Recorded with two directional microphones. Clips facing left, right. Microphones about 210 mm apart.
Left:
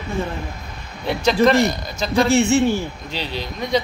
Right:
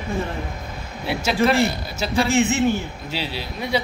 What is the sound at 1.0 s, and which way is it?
A man's voice, 10° right (ahead or behind).